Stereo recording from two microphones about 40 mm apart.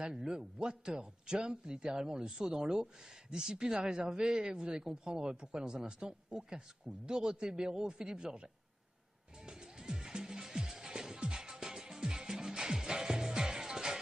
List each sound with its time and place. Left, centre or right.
0.6 s a man's voice: centre
9.5 s music: centre